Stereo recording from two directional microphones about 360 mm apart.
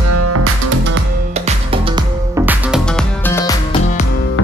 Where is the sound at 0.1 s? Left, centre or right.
Right.